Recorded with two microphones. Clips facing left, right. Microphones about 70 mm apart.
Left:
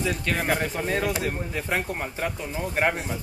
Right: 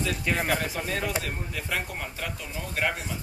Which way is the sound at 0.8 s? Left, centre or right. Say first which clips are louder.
Left 4 dB; centre.